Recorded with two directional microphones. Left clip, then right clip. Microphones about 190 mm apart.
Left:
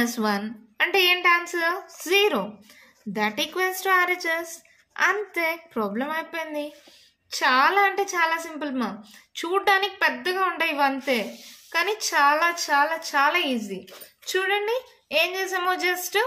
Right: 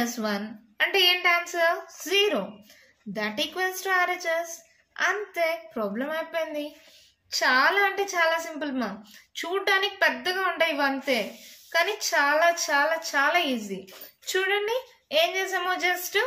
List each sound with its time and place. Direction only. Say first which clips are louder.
0.0 s a woman's voice: left 4 dB; 45° left (ahead or behind)